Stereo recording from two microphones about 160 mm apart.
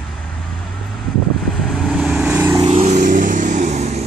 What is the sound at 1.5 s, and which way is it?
Vehicle, centre (ahead or behind).